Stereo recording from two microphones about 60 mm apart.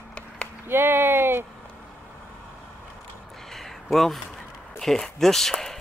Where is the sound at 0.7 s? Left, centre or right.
Right.